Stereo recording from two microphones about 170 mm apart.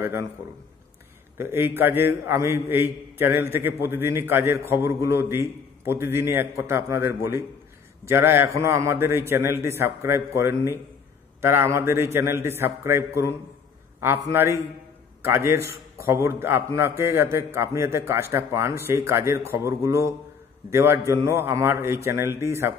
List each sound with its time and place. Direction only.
1.4 s a man's voice: 15° right (ahead or behind)
14.3 s a man's voice: 15° right (ahead or behind)